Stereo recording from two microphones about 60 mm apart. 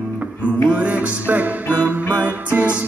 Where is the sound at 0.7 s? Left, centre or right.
Right.